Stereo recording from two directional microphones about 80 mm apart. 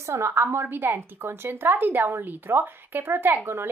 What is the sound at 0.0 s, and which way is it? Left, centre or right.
A woman's voice, right.